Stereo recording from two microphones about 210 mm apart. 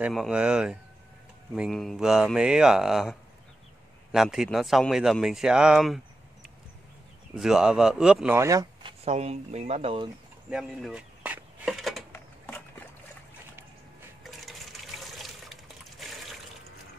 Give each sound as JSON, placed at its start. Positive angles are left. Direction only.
{"t": 0.0, "sound": "speech", "side_deg": 0}
{"t": 7.3, "sound": "speech", "side_deg": 0}
{"t": 9.0, "sound": "speech", "side_deg": -30}
{"t": 10.5, "sound": "a sound", "side_deg": 0}
{"t": 14.2, "sound": "toilet flush", "side_deg": 0}